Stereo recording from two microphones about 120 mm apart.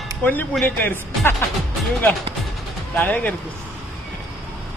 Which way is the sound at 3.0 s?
10° left (ahead or behind).